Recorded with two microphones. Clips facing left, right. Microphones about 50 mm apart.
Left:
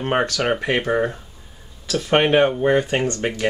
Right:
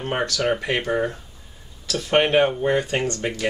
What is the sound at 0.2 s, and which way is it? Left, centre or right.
Speech, left.